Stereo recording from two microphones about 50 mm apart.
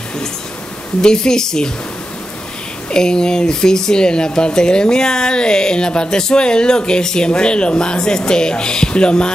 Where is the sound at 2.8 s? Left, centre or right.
Centre.